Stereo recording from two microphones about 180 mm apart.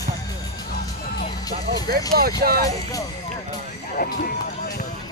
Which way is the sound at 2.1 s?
60° right (ahead or behind).